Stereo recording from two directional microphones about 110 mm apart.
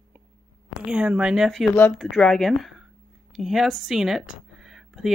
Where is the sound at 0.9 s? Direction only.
10° right (ahead or behind).